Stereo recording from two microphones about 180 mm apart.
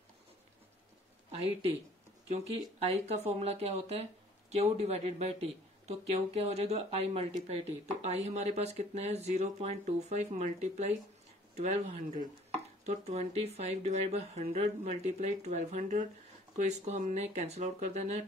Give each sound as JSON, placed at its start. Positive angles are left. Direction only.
{"t": 1.4, "sound": "speech", "side_deg": -35}
{"t": 2.8, "sound": "speech", "side_deg": -35}